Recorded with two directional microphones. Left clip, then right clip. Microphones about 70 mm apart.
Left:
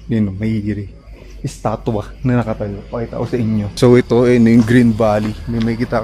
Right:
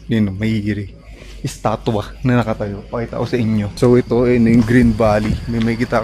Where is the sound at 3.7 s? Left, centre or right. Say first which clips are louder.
Left 3 dB; left.